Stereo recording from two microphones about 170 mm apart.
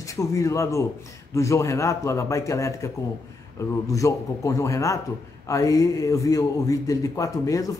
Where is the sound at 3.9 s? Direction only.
20° left (ahead or behind).